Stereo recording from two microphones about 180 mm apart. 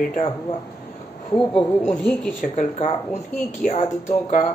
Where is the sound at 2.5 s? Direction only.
40° left (ahead or behind).